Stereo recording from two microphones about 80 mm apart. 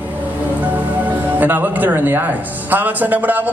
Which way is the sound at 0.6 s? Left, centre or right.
Right.